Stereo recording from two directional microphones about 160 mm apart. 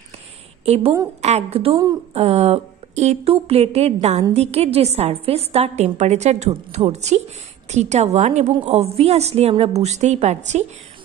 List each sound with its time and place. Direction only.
0.7 s a woman's voice: 40° right (ahead or behind)